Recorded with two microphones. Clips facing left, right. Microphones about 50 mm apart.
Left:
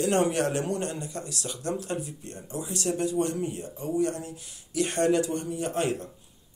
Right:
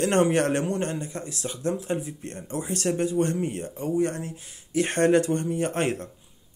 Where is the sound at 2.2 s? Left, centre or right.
Right.